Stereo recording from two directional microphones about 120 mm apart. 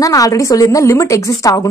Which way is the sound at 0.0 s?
30° left (ahead or behind).